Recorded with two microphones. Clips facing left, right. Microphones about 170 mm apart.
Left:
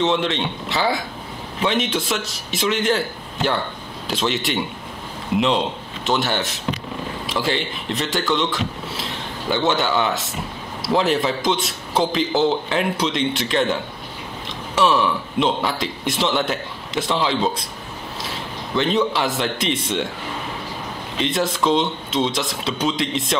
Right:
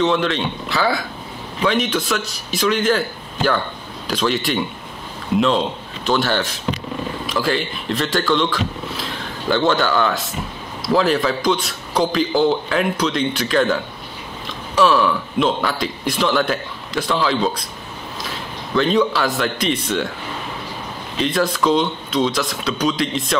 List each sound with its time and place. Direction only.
0.0 s a man's voice: 25° left (ahead or behind)
4.1 s a man's voice: 20° left (ahead or behind)
6.0 s a man's voice: 20° left (ahead or behind)
14.8 s a man's voice: 25° left (ahead or behind)
18.8 s a man's voice: 20° left (ahead or behind)
21.2 s a man's voice: 25° left (ahead or behind)